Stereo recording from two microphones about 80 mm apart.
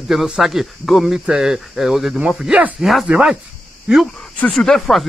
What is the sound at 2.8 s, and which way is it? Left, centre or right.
Speech, centre.